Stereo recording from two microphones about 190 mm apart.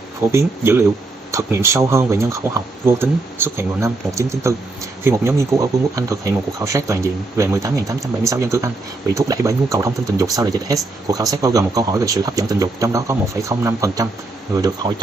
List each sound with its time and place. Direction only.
0.3 s speech: 15° right (ahead or behind)